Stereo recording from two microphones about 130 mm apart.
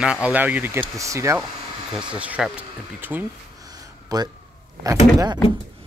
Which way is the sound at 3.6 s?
30° right (ahead or behind).